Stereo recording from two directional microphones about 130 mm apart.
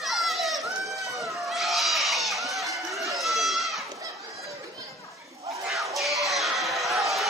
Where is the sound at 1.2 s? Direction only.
Centre (ahead or behind).